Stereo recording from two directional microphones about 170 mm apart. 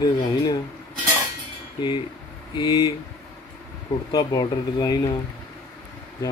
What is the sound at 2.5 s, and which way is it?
Speech, 25° left (ahead or behind).